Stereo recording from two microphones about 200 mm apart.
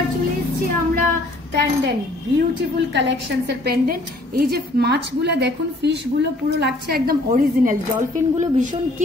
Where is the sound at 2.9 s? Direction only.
60° right (ahead or behind).